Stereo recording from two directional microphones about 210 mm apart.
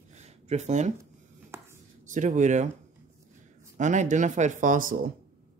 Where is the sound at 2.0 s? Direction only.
35° right (ahead or behind).